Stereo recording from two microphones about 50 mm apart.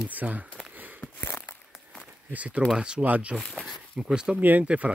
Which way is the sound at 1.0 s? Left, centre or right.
Left.